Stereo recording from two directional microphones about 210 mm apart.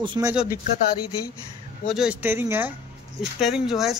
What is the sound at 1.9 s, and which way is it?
Speech, 5° right (ahead or behind).